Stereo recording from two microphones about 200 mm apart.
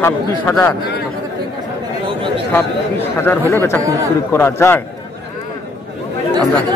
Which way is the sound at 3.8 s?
15° right (ahead or behind).